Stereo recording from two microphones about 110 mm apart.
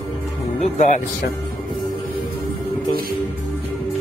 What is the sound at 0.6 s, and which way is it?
Speech, 90° left.